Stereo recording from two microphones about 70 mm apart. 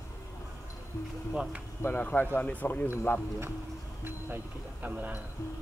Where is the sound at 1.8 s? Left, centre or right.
Left.